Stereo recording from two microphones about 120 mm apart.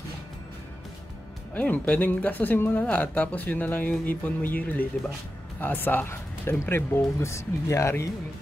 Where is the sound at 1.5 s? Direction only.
15° left (ahead or behind).